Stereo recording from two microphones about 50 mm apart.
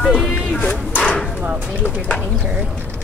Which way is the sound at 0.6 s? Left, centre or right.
Left.